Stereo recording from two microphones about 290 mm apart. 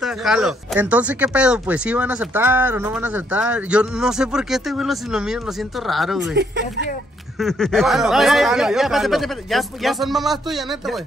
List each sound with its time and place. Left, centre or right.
0.0 s speech: centre
6.3 s speech: right
7.3 s speech: centre